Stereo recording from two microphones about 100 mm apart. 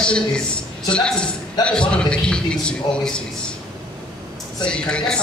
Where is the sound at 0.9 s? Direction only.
10° left (ahead or behind).